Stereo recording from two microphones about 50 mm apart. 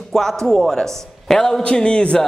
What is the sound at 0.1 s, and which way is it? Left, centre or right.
A man's voice, centre.